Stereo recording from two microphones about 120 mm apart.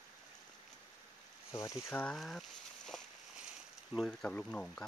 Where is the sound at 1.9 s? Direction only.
10° left (ahead or behind).